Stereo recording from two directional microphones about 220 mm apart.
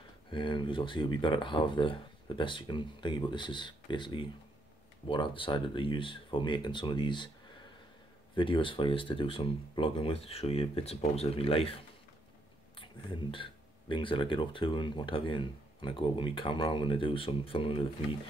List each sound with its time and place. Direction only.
0.3 s speech: 20° left (ahead or behind)
8.4 s speech: 25° left (ahead or behind)
12.7 s speech: 20° left (ahead or behind)